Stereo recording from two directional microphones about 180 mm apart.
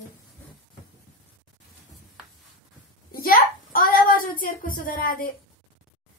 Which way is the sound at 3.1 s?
50° left (ahead or behind).